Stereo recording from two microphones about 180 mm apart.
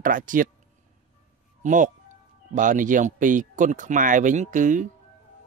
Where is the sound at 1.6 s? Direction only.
45° right (ahead or behind).